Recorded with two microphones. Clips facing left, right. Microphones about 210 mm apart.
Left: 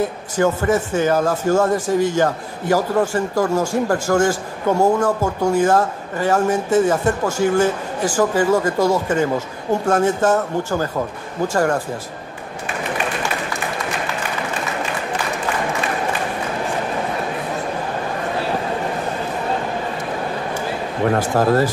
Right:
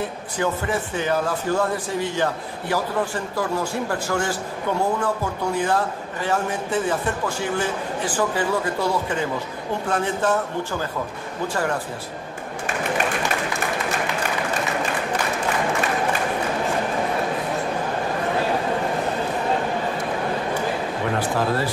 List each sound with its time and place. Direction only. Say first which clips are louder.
0.4 s speech: left 7 dB; 45° left (ahead or behind)
21.2 s speech: left 6 dB; 45° left (ahead or behind)